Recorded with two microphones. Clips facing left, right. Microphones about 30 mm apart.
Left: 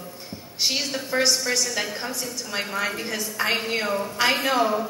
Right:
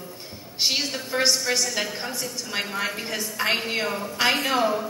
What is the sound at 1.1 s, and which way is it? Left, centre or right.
A woman's voice, centre.